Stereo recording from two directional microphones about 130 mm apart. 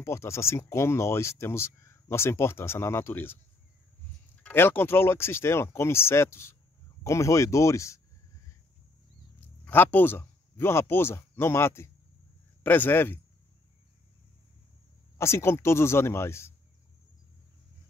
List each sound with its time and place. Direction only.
0.0 s speech: 20° left (ahead or behind)
4.4 s speech: 15° left (ahead or behind)
9.7 s a man's voice: 15° left (ahead or behind)
15.1 s speech: 20° left (ahead or behind)